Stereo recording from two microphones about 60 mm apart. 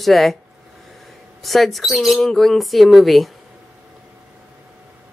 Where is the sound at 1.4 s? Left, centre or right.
Centre.